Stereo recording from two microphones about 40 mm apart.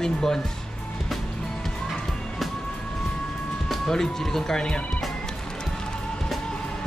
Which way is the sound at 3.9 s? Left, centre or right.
Centre.